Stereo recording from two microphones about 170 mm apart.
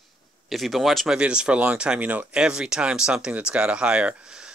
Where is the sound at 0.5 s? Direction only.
Centre (ahead or behind).